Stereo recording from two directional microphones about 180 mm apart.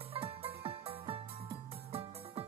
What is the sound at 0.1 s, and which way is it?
Music, 30° right (ahead or behind).